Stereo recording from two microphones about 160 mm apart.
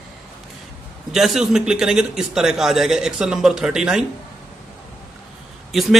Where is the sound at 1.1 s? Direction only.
Centre (ahead or behind).